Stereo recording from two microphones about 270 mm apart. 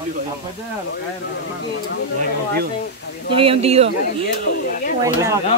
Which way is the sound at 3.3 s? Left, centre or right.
Centre.